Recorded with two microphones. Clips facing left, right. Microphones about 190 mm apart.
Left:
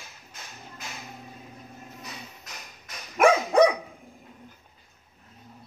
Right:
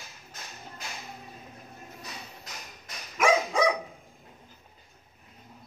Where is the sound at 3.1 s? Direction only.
55° left (ahead or behind).